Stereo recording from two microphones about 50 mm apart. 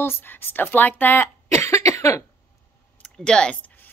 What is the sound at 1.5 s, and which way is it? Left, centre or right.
Cough, left.